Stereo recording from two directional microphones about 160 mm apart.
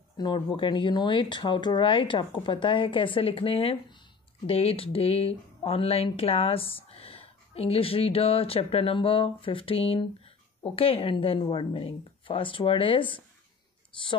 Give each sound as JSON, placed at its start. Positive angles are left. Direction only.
{"t": 0.2, "sound": "speech", "side_deg": 30}